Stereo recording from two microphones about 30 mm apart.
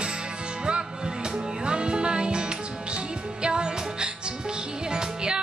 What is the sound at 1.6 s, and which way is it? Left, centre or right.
Music, right.